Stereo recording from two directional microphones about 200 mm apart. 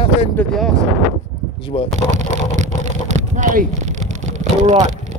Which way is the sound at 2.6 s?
35° right (ahead or behind).